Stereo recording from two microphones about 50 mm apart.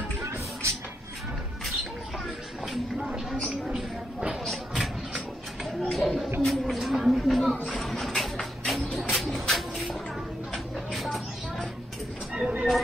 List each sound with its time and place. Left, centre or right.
0.2 s music: right
2.6 s a sound: centre
4.5 s a sound: centre
7.6 s music: centre
10.5 s vehicle: centre
12.4 s vehicle: centre